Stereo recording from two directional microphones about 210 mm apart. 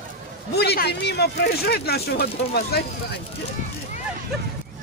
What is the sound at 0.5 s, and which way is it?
Speech, 50° left (ahead or behind).